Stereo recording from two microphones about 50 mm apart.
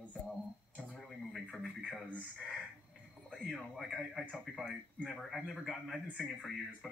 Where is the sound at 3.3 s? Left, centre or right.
Centre.